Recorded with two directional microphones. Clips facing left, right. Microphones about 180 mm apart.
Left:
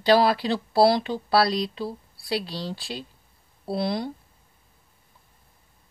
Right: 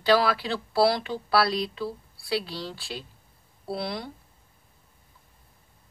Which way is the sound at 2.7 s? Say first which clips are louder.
Left 4 dB; 20° left (ahead or behind).